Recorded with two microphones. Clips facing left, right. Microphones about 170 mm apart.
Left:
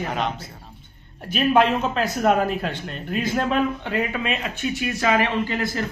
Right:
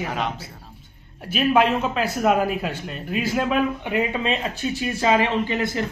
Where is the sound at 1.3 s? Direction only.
5° right (ahead or behind).